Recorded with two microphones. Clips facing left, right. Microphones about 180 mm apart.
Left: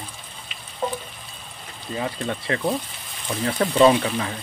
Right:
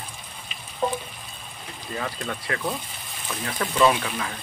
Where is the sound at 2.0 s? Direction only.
30° left (ahead or behind).